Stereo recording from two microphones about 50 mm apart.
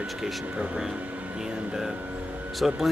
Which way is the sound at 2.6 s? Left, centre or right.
Centre.